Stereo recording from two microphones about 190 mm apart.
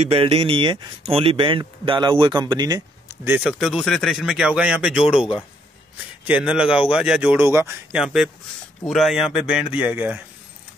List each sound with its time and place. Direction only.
0.0 s speech: 30° right (ahead or behind)
3.3 s speech: 5° right (ahead or behind)
6.2 s speech: 5° right (ahead or behind)
8.0 s speech: 5° right (ahead or behind)